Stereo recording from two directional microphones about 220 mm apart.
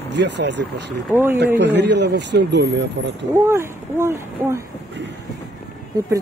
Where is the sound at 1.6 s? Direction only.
50° right (ahead or behind).